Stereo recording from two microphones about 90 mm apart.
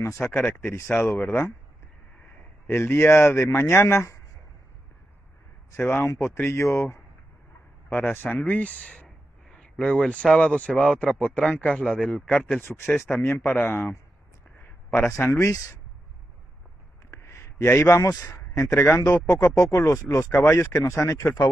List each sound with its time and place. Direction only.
0.2 s speech: 15° left (ahead or behind)
5.8 s speech: 25° left (ahead or behind)
12.6 s a man's voice: 25° left (ahead or behind)
17.1 s a man's voice: 30° left (ahead or behind)